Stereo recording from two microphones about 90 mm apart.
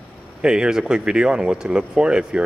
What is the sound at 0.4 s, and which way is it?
Speech, 10° right (ahead or behind).